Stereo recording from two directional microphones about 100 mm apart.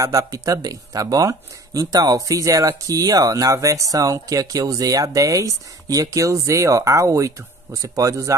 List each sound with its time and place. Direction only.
0.0 s speech: 35° right (ahead or behind)